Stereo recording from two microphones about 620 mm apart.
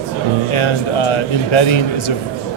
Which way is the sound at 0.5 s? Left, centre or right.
Left.